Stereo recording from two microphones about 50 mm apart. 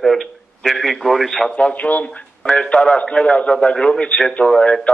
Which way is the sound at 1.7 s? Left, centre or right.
Left.